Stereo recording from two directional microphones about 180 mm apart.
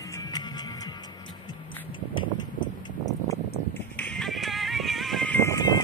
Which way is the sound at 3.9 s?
5° left (ahead or behind).